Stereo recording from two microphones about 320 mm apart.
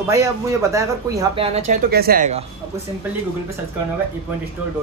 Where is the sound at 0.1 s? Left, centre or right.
Centre.